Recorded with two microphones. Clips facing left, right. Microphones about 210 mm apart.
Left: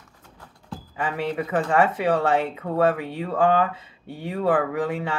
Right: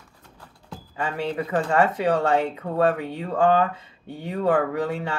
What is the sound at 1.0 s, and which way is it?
Speech, 30° right (ahead or behind).